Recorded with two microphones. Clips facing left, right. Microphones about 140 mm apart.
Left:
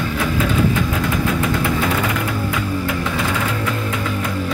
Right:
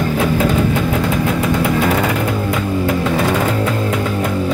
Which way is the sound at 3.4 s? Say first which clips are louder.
Right 5 dB; 30° right (ahead or behind).